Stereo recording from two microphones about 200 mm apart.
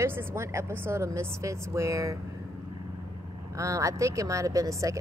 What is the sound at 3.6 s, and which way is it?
Speech, 15° right (ahead or behind).